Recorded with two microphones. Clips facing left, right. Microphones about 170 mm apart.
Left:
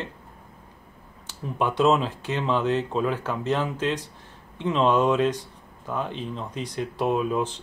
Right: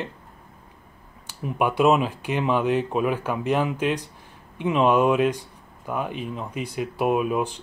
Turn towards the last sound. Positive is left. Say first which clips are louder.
# right 2 dB
turn(degrees=-10)  # may be behind; listen again after turning